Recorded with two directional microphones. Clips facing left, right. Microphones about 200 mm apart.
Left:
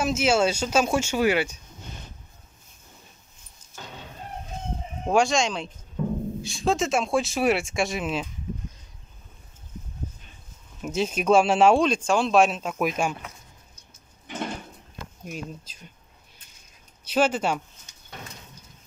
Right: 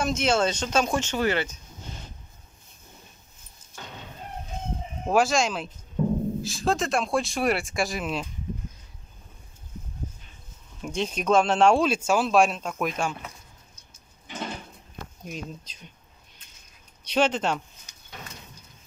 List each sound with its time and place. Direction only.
0.0 s speech: 5° left (ahead or behind)
5.0 s speech: centre (ahead or behind)
6.0 s music: 35° right (ahead or behind)
6.4 s speech: centre (ahead or behind)
10.8 s speech: 5° left (ahead or behind)
15.2 s speech: 5° left (ahead or behind)
17.0 s speech: 5° left (ahead or behind)